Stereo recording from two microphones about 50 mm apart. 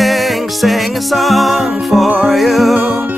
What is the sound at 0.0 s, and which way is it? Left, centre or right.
Music, centre.